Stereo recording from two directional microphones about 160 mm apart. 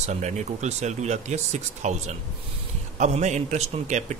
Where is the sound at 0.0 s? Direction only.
45° right (ahead or behind).